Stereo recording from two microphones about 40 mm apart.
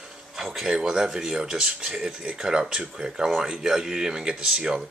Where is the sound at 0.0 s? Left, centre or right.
Centre.